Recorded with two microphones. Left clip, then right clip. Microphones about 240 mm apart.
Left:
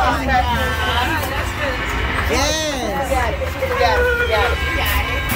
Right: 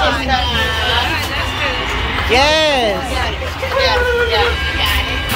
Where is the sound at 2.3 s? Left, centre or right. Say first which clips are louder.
Right 11 dB; centre.